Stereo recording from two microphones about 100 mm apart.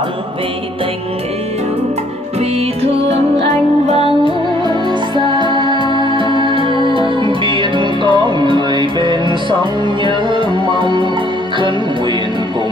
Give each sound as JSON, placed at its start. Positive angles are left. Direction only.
{"t": 3.9, "sound": "music", "side_deg": -70}
{"t": 4.6, "sound": "music", "side_deg": -50}
{"t": 5.7, "sound": "music", "side_deg": 50}
{"t": 5.9, "sound": "music", "side_deg": -50}